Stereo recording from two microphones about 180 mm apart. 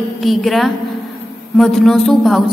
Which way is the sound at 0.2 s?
Centre (ahead or behind).